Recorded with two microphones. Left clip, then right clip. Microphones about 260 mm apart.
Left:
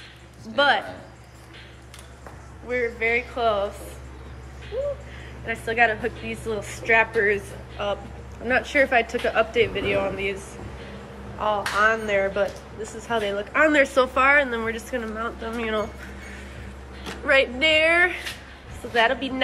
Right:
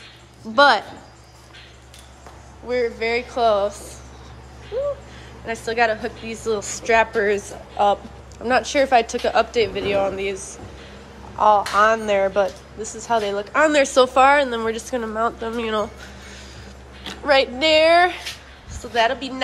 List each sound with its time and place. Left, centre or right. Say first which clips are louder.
2.7 s speech: right 2 dB; centre
5.5 s speech: right 1 dB; centre
17.3 s speech: right 3 dB; centre
18.9 s speech: right 1 dB; centre